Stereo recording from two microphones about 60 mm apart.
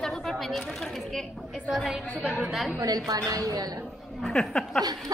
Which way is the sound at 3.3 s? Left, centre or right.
Right.